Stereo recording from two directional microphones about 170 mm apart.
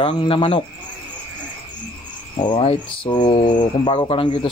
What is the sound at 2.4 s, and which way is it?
Speech, 30° left (ahead or behind).